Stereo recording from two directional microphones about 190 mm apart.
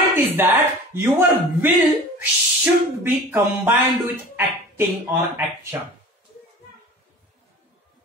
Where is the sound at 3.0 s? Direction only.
10° right (ahead or behind).